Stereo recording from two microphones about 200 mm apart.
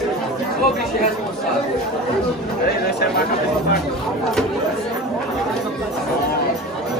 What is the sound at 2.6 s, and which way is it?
Speech, 50° left (ahead or behind).